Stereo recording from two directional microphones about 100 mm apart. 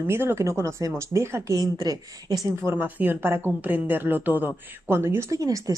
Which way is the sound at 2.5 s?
25° right (ahead or behind).